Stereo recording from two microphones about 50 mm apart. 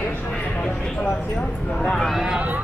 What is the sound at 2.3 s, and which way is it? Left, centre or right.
Speech, right.